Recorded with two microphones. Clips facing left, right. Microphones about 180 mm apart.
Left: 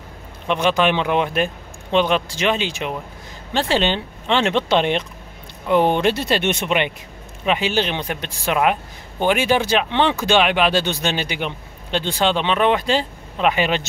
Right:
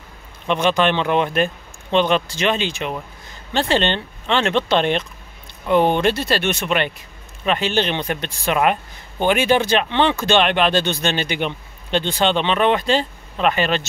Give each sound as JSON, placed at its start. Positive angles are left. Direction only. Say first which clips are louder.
{"t": 0.5, "sound": "speech", "louder": "even", "side_deg": 5}